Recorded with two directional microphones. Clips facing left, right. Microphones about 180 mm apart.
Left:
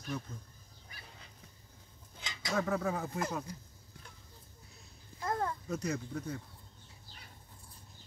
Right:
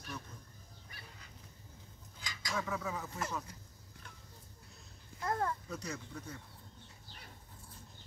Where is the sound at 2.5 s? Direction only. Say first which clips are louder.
Left 6 dB; 50° left (ahead or behind).